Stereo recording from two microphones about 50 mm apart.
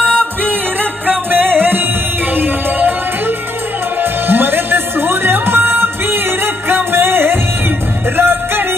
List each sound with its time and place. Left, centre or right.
0.2 s music: left
1.0 s music: right